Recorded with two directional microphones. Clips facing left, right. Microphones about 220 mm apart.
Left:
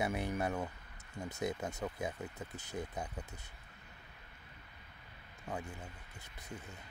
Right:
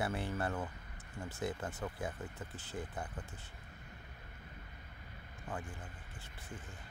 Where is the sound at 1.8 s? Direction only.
10° left (ahead or behind).